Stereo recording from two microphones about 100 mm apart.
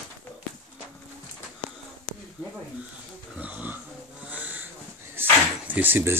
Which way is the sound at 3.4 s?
15° right (ahead or behind).